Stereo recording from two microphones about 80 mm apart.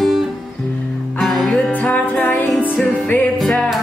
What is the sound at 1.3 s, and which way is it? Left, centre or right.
Music, centre.